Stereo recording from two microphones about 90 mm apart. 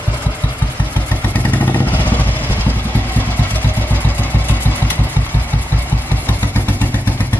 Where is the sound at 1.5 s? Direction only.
20° left (ahead or behind).